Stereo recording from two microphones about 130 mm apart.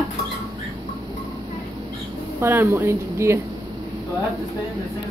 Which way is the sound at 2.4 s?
20° right (ahead or behind).